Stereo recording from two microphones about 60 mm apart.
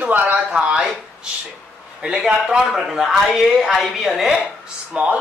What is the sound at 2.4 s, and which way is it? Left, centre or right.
Speech, centre.